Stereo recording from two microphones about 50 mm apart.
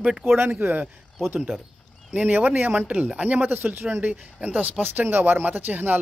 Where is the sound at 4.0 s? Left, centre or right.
Right.